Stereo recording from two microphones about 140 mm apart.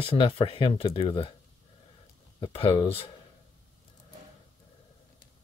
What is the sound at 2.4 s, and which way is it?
Speech, 40° left (ahead or behind).